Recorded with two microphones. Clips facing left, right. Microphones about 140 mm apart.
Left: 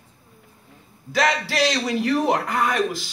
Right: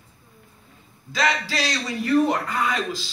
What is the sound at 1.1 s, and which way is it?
Speech, 60° left (ahead or behind).